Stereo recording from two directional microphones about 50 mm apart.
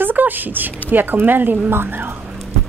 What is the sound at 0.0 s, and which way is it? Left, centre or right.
A woman's voice, right.